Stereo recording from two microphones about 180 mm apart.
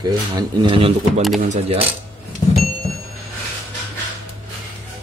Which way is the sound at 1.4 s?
40° right (ahead or behind).